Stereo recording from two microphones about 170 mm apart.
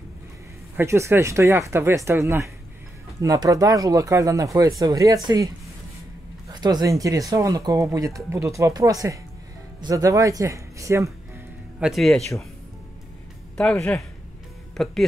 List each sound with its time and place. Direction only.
0.7 s speech: 15° right (ahead or behind)
6.5 s speech: 25° right (ahead or behind)
11.8 s speech: centre (ahead or behind)
13.6 s speech: 5° left (ahead or behind)